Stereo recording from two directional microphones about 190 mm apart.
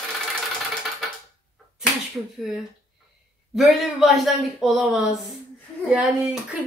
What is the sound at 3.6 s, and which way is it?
A woman's voice, centre (ahead or behind).